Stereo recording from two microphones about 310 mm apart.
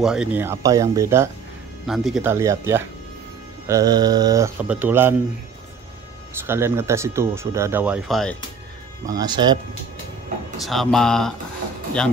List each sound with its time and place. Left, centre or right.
0.0 s speech: centre
6.4 s speech: centre
9.0 s speech: centre
10.6 s speech: centre